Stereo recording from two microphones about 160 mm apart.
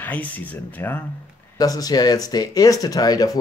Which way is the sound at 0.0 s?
10° left (ahead or behind).